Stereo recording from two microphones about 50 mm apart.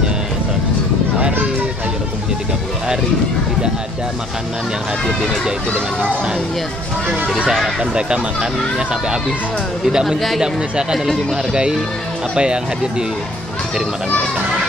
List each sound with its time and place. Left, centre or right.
7.8 s speech: centre
9.8 s speech: centre
10.4 s speech: centre
12.4 s speech: centre